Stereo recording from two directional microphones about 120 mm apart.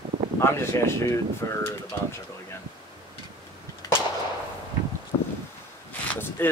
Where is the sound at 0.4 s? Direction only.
20° left (ahead or behind).